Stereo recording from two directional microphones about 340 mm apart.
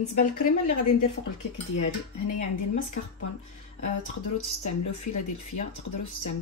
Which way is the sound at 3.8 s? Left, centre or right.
Left.